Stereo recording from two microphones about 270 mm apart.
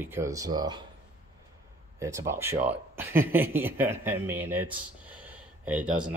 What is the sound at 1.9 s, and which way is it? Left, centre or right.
Speech, centre.